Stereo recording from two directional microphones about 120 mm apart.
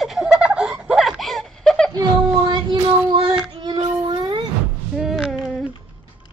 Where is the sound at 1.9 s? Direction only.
35° right (ahead or behind).